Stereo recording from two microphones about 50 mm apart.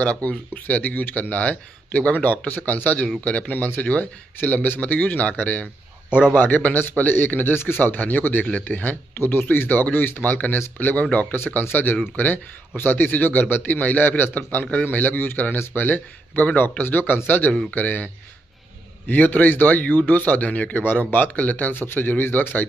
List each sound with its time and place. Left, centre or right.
0.0 s speech: left
6.0 s a man's voice: right
6.3 s speech: left
9.2 s speech: left